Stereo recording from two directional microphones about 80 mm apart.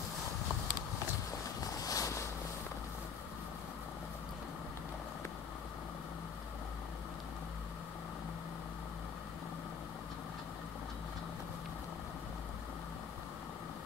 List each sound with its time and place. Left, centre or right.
1.8 s boat: left